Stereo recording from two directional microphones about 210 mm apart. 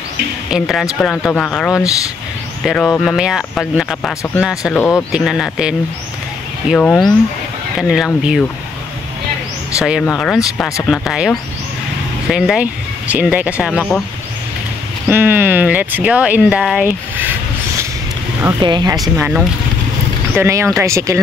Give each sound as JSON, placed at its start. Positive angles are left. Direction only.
{"t": 0.5, "sound": "speech", "side_deg": 0}
{"t": 9.8, "sound": "speech", "side_deg": -5}
{"t": 15.0, "sound": "speech", "side_deg": -10}
{"t": 18.4, "sound": "speech", "side_deg": -20}
{"t": 18.9, "sound": "speech", "side_deg": -5}